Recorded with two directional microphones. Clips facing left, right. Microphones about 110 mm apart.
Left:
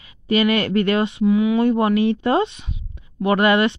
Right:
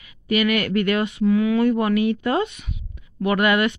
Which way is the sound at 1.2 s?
10° left (ahead or behind).